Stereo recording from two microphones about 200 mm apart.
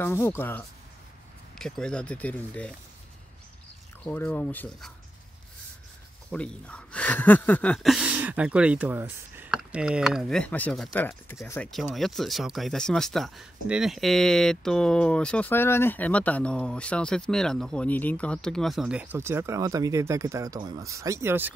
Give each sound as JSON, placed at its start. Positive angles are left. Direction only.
{"t": 0.0, "sound": "speech", "side_deg": 10}
{"t": 4.0, "sound": "speech", "side_deg": 5}
{"t": 6.3, "sound": "speech", "side_deg": 5}
{"t": 11.7, "sound": "speech", "side_deg": 0}